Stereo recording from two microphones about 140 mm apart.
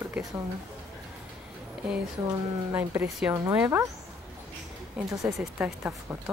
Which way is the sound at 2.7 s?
15° right (ahead or behind).